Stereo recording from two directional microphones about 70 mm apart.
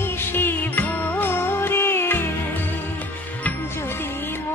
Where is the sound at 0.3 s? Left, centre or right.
Left.